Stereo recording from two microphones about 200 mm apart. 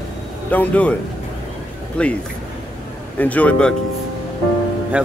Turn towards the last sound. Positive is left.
turn(degrees=-5)  # may be behind; listen again after turning